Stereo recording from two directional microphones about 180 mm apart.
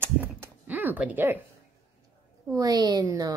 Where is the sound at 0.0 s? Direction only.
10° right (ahead or behind).